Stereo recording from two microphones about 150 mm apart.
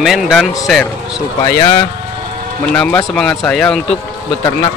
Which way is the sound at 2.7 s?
10° left (ahead or behind).